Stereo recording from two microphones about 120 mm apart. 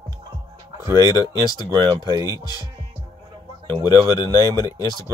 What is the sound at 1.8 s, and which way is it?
Speech, 30° right (ahead or behind).